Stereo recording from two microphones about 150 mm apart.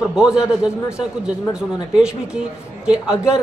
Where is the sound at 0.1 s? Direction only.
5° right (ahead or behind).